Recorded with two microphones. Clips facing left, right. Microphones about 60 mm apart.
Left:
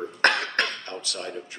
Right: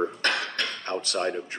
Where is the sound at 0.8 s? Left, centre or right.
Right.